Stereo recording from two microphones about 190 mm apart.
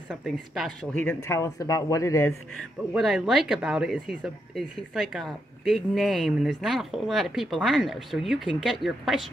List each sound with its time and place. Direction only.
0.1 s speech: centre (ahead or behind); by 2.3 s 15° left (ahead or behind)
2.9 s speech: centre (ahead or behind)